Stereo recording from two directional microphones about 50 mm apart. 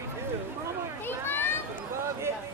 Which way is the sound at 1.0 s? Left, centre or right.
Left.